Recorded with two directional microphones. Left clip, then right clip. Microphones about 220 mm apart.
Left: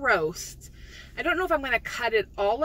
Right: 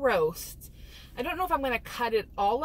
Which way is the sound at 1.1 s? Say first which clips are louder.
Left 4 dB; centre (ahead or behind).